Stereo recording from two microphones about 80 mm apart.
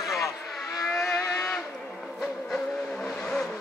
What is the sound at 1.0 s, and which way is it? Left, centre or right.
Cattle, left.